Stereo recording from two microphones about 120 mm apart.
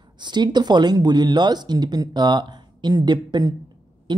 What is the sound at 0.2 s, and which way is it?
Speech, 40° right (ahead or behind).